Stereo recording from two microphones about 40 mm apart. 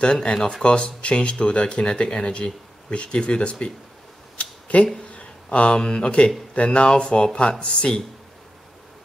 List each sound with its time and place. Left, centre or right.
0.0 s speech: left
4.4 s a sound: left
5.1 s speech: left